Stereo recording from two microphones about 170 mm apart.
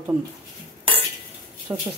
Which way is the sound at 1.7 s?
20° right (ahead or behind).